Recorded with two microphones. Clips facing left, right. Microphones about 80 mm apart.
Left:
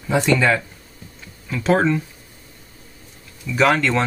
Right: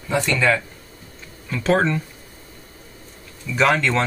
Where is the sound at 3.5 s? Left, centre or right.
Centre.